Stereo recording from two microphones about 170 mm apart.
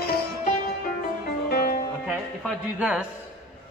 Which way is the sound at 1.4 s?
60° left (ahead or behind).